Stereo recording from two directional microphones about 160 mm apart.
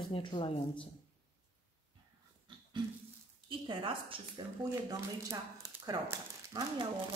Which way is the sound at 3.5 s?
30° right (ahead or behind).